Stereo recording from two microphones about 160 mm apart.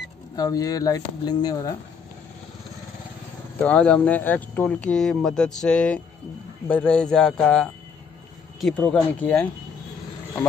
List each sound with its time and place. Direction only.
0.4 s speech: 20° left (ahead or behind)
3.6 s a man's voice: 5° left (ahead or behind)